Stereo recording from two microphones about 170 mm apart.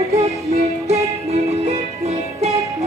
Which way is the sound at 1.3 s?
40° right (ahead or behind).